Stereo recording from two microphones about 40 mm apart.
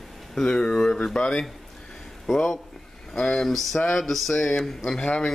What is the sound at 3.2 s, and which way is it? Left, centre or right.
Speech, centre.